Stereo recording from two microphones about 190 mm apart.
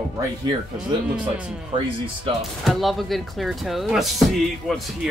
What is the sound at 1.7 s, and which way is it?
Speech, 25° right (ahead or behind).